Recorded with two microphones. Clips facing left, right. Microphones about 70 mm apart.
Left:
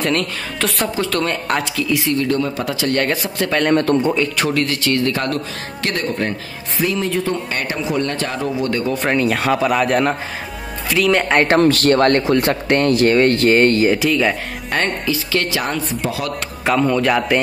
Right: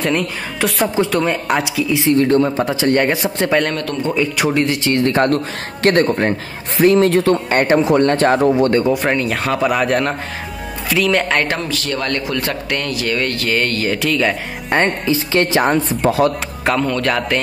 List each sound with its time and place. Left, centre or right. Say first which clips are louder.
0.0 s speech: right 1 dB; centre
2.1 s speech: right 5 dB; right
4.1 s speech: right 1 dB; centre
4.6 s a man's voice: right 2 dB; right
7.5 s speech: right 8 dB; right
8.4 s a man's voice: right 8 dB; right
8.9 s speech: even; centre
11.4 s speech: left 8 dB; left
12.2 s speech: left 5 dB; left
13.8 s speech: left 1 dB; centre
14.7 s speech: right 4 dB; right
16.0 s speech: right 8 dB; right
16.8 s a man's voice: left 2 dB; centre